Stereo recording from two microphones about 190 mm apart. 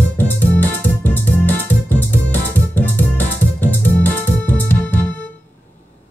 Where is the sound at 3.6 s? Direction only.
10° left (ahead or behind).